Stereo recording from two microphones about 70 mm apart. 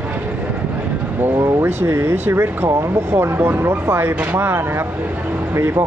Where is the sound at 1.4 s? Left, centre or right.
Right.